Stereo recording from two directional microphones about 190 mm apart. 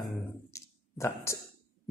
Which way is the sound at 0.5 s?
15° left (ahead or behind).